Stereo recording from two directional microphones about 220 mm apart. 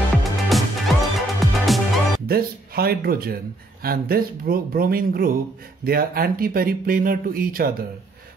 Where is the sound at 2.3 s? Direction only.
45° right (ahead or behind).